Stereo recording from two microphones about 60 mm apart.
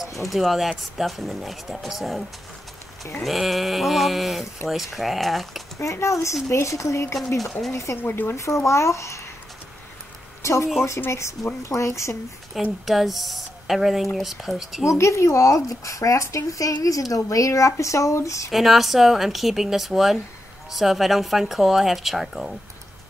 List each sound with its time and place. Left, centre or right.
0.2 s speech: centre
3.3 s speech: centre
5.8 s speech: left
8.0 s speech: left
8.4 s speech: left
10.4 s speech: left
12.8 s speech: centre
14.9 s speech: left
18.5 s speech: centre